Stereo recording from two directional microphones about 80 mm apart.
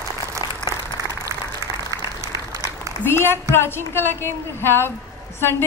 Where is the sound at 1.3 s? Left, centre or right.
Right.